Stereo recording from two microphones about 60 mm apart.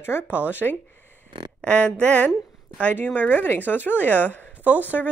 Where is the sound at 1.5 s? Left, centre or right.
Centre.